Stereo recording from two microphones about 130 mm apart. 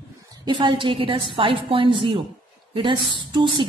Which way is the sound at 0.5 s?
40° right (ahead or behind).